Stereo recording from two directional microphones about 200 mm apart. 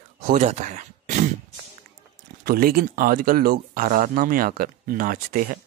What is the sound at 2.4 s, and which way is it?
Speech, 50° right (ahead or behind).